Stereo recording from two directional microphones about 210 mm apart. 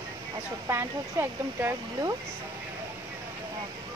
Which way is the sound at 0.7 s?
10° right (ahead or behind).